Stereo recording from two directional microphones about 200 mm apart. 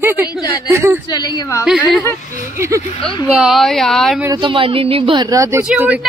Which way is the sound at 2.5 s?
15° right (ahead or behind).